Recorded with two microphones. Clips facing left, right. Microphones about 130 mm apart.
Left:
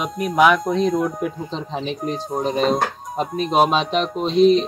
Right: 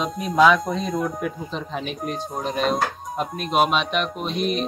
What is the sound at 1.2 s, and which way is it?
Speech, 25° left (ahead or behind).